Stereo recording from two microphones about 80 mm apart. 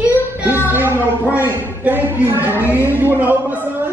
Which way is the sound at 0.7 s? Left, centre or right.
Right.